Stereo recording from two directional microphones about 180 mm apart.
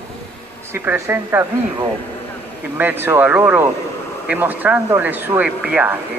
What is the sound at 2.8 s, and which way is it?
Speech, 10° right (ahead or behind).